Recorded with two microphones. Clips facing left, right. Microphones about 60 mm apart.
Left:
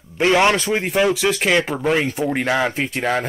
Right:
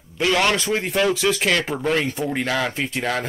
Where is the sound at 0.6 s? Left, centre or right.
Centre.